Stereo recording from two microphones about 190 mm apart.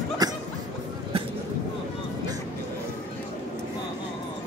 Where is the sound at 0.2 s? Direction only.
20° right (ahead or behind).